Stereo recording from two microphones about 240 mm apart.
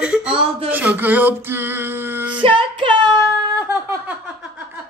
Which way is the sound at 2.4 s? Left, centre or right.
Right.